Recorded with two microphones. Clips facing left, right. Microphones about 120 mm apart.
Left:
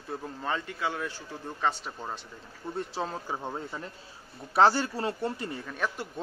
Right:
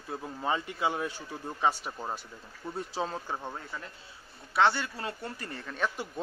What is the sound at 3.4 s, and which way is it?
Speech, 15° left (ahead or behind).